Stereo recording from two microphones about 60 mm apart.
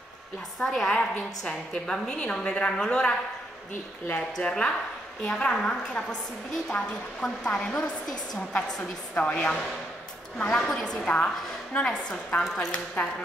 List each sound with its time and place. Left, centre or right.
0.6 s a woman's voice: centre
1.4 s a woman's voice: centre